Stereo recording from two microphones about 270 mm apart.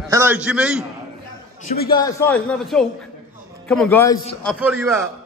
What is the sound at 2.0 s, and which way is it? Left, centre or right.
Speech, centre.